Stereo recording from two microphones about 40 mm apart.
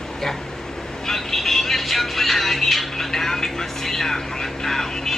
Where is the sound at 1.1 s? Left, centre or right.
Centre.